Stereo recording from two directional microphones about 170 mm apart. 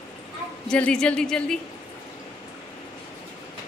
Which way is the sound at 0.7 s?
5° left (ahead or behind).